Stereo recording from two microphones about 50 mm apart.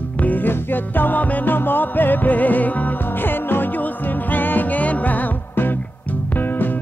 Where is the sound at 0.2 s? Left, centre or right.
Left.